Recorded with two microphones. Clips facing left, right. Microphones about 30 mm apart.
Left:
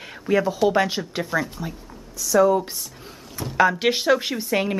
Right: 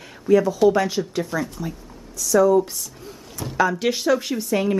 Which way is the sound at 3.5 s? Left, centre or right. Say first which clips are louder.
Left 2 dB; left.